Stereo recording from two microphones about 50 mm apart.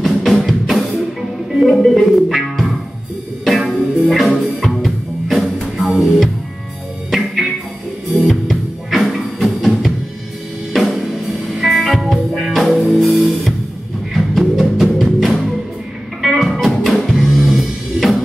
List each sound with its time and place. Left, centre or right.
0.0 s music: centre